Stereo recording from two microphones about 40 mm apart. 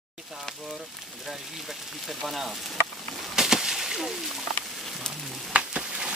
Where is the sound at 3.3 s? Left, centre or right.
Centre.